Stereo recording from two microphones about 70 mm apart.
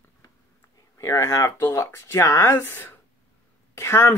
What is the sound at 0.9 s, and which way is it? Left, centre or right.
Speech, left.